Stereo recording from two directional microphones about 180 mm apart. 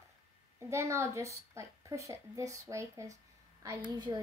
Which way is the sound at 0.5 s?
15° right (ahead or behind).